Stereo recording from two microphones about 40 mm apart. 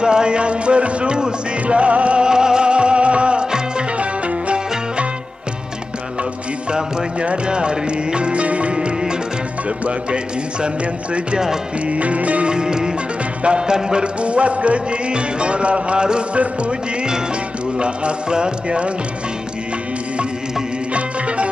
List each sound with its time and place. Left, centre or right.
0.0 s music: right
2.2 s music: centre
6.7 s music: right
8.7 s music: centre
11.9 s music: right
12.5 s music: centre
14.0 s music: right
17.7 s music: right
20.9 s music: right